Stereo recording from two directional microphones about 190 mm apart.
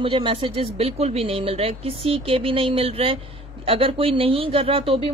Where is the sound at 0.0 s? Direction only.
25° right (ahead or behind).